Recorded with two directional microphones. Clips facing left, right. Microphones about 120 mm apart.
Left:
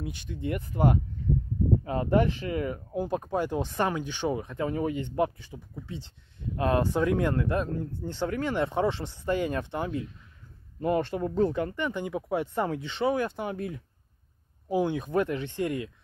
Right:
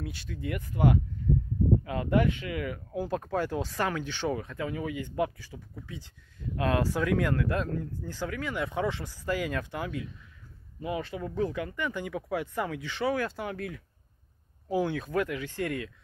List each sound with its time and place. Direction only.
0.0 s speech: 20° left (ahead or behind)
3.0 s speech: 20° left (ahead or behind)
4.6 s speech: 35° left (ahead or behind)
11.1 s speech: 35° left (ahead or behind); by 15.9 s 20° left (ahead or behind)